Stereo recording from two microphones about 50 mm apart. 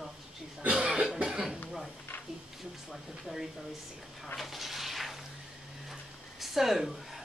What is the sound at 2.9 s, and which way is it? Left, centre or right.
Speech, centre.